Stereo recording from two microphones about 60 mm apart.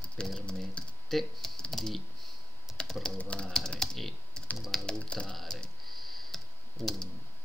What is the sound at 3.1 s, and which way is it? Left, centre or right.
Speech, centre.